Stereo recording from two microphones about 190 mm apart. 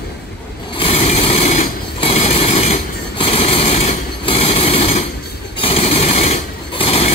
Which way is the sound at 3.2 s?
30° left (ahead or behind).